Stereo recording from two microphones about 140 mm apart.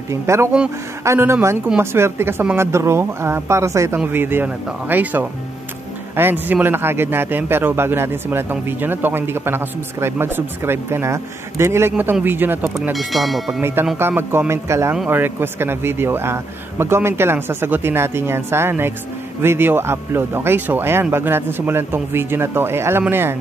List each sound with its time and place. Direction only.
0.1 s a man's voice: 20° right (ahead or behind)
12.9 s speech: centre (ahead or behind)
13.6 s a man's voice: 15° right (ahead or behind)